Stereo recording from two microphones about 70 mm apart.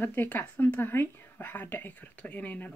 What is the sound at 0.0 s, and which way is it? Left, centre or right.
A woman's voice, left.